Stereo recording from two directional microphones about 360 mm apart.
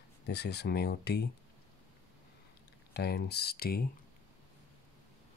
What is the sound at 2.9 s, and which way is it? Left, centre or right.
Speech, left.